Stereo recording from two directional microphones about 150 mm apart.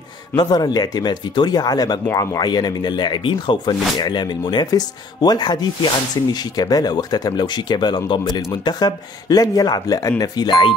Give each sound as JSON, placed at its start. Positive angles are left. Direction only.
{"t": 0.4, "sound": "speech", "side_deg": 25}